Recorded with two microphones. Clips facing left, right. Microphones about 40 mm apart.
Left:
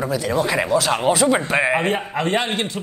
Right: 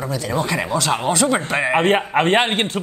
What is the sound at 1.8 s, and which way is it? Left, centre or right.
Speech, right.